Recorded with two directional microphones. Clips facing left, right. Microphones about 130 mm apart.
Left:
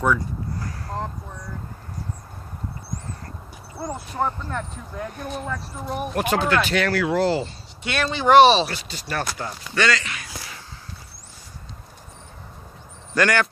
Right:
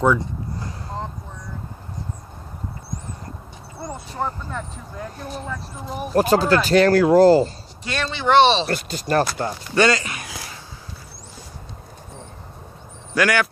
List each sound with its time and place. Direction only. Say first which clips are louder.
0.0 s a sound: right 3 dB; 25° right (ahead or behind)
3.8 s speech: left 2 dB; centre (ahead or behind)
6.1 s speech: right 5 dB; 35° right (ahead or behind)
8.1 s speech: left 2 dB; 15° left (ahead or behind)
8.6 s speech: right 8 dB; 50° right (ahead or behind)
13.1 s speech: right 1 dB; 5° right (ahead or behind)